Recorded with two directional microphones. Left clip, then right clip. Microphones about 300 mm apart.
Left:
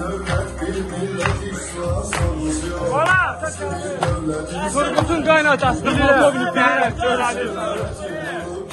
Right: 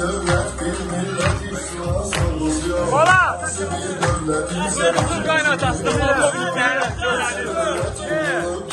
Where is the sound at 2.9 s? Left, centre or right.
Centre.